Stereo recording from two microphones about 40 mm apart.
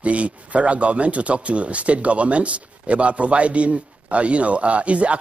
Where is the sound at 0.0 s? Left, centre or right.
Right.